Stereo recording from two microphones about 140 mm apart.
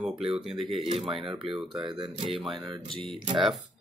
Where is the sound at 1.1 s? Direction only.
40° right (ahead or behind).